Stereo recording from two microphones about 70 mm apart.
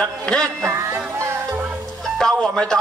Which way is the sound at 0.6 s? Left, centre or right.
Right.